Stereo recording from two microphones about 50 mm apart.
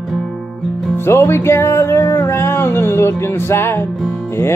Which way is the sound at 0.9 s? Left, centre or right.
Left.